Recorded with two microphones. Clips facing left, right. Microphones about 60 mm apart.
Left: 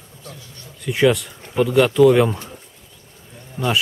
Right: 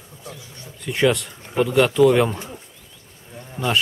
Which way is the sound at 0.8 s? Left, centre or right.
Centre.